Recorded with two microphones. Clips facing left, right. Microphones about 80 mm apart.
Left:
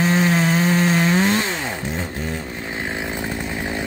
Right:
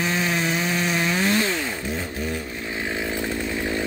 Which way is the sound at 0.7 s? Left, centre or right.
Left.